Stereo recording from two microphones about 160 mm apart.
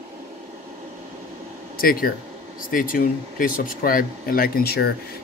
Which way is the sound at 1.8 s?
65° left (ahead or behind).